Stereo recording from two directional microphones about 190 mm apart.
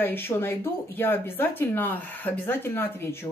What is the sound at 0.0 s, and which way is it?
Speech, 10° left (ahead or behind).